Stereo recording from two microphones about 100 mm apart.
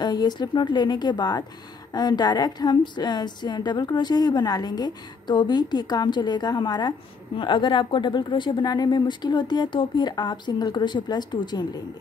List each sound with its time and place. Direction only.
0.0 s a woman's voice: 45° left (ahead or behind)